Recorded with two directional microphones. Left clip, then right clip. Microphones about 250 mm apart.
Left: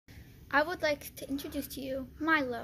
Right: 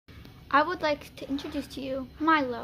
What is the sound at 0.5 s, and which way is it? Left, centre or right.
A child's voice, centre.